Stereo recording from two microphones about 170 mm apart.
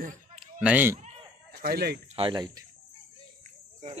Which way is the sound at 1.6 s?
65° right (ahead or behind).